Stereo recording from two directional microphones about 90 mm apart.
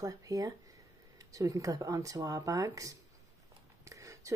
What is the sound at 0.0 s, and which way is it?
Speech, 40° right (ahead or behind).